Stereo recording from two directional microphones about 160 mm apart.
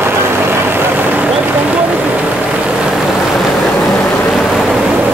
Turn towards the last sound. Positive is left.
turn(degrees=-10)  # may be behind; listen again after turning